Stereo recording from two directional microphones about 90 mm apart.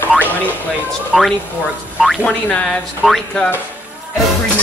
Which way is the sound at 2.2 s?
15° left (ahead or behind).